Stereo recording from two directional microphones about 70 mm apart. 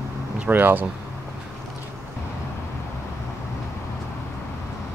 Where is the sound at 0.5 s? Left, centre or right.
Right.